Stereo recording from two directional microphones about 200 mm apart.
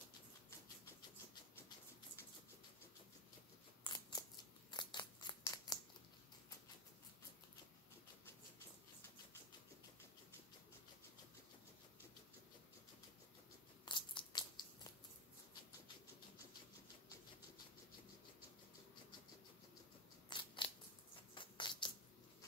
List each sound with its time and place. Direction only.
3.8 s scissors: 20° left (ahead or behind)
13.8 s crunch: 20° left (ahead or behind)
20.2 s crunch: 25° left (ahead or behind)
21.4 s music: 25° left (ahead or behind)